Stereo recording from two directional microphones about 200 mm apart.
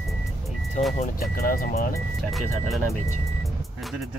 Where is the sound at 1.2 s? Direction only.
45° left (ahead or behind).